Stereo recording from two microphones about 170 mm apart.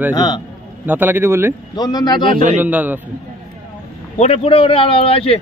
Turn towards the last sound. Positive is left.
turn(degrees=35)  # may be behind; listen again after turning